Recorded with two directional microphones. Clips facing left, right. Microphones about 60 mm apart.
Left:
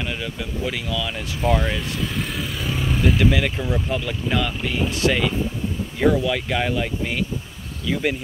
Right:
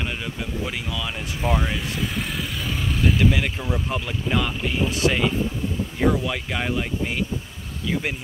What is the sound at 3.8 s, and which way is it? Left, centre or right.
Speech, centre.